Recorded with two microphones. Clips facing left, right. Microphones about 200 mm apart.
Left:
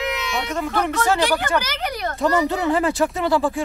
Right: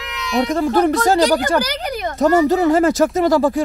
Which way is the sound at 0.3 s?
35° right (ahead or behind).